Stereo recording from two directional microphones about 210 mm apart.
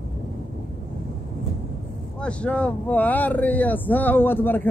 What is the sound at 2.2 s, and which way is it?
Speech, 5° left (ahead or behind).